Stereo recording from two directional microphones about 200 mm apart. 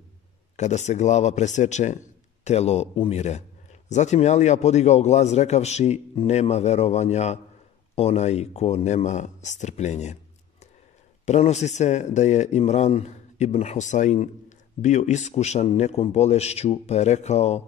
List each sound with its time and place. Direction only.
0.6 s a man's voice: 35° left (ahead or behind)
11.2 s a man's voice: 35° left (ahead or behind)